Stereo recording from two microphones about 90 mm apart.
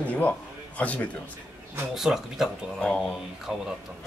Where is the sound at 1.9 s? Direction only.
5° right (ahead or behind).